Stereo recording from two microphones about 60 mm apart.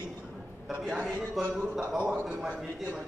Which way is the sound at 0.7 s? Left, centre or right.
Centre.